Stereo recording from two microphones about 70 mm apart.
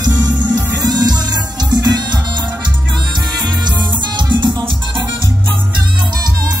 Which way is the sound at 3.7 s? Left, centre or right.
Right.